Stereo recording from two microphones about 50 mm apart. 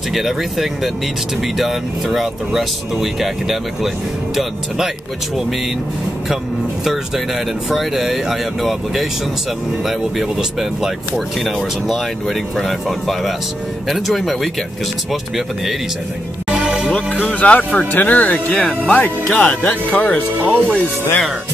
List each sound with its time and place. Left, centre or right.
0.1 s speech: centre
7.7 s speech: centre
12.5 s speech: centre
16.4 s music: centre
16.9 s speech: left